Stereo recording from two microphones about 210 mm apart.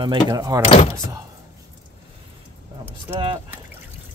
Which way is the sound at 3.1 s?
25° right (ahead or behind).